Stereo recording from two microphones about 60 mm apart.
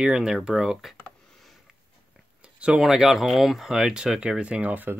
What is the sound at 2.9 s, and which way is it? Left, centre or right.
Speech, centre.